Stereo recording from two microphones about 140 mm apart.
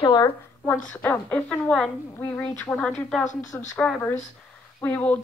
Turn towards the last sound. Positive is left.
turn(degrees=10)  # may be behind; listen again after turning